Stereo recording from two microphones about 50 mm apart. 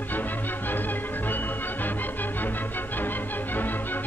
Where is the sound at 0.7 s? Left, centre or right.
Left.